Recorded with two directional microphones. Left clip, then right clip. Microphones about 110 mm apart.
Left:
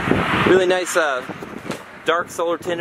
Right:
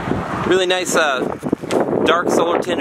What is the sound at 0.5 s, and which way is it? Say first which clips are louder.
Speech: right 2 dB; 20° right (ahead or behind).